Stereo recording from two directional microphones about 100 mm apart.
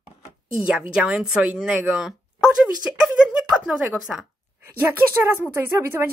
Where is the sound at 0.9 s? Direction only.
10° right (ahead or behind).